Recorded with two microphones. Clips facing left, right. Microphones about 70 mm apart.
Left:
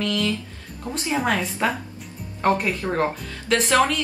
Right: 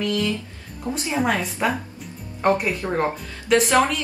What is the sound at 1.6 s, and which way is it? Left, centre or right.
Speech, centre.